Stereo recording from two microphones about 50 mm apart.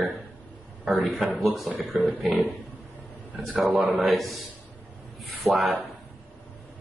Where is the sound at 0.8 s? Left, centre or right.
Centre.